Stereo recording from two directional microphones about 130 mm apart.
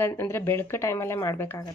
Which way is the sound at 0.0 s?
20° left (ahead or behind).